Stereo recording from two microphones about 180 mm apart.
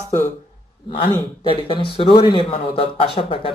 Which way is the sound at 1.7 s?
30° left (ahead or behind).